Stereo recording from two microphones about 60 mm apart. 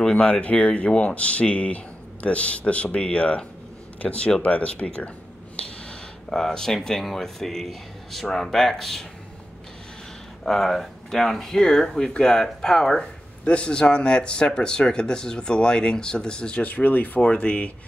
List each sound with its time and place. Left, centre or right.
0.0 s speech: centre
6.3 s speech: centre
10.4 s speech: centre
16.6 s speech: left